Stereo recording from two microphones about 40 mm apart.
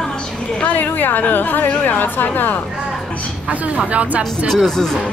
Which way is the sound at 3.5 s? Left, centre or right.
Right.